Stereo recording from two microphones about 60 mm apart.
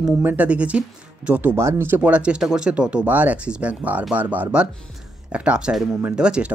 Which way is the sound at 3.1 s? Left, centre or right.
Right.